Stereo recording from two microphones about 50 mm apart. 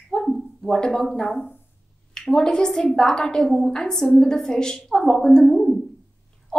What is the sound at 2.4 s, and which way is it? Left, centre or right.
A woman's voice, centre.